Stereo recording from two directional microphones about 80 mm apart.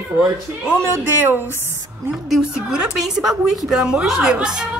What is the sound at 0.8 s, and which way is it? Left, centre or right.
Speech, right.